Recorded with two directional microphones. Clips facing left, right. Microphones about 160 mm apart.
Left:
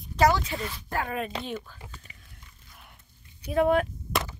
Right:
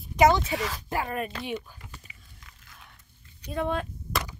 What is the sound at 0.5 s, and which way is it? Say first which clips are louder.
Speech: right 3 dB; 90° right.